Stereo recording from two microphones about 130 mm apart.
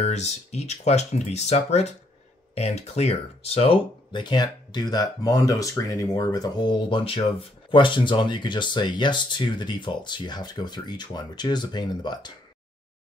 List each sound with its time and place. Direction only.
0.0 s speech: 60° left (ahead or behind); by 12.3 s 35° left (ahead or behind)